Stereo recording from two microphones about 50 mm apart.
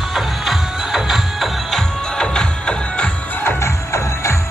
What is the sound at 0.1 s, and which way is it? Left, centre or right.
Music, centre.